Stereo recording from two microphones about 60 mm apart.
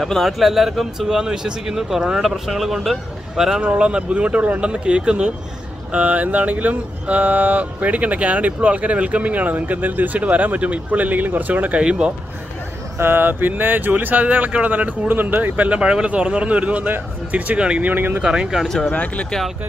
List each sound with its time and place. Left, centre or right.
0.0 s speech: centre; by 11.8 s right
11.8 s speech: centre
12.9 s speech: right; by 17.8 s centre
17.8 s speech: right
18.2 s speech: centre
18.9 s speech: left